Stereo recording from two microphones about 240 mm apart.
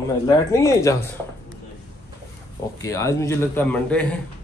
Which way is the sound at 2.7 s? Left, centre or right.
Centre.